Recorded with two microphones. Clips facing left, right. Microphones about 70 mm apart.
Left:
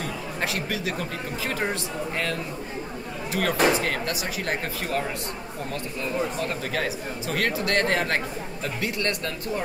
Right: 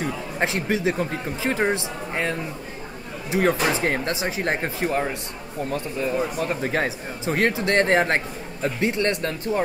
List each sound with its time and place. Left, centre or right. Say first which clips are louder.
0.0 s speech: right 4 dB; right